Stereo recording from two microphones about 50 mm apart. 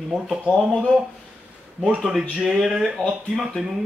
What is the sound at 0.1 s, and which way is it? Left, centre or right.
Speech, centre.